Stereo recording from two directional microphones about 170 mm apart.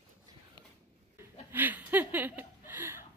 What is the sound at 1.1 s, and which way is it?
Chuckle, 10° right (ahead or behind).